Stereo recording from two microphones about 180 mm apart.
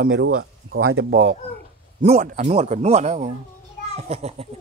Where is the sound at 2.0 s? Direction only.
40° right (ahead or behind).